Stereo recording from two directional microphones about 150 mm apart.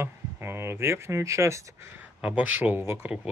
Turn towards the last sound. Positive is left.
turn(degrees=-10)  # may be behind; listen again after turning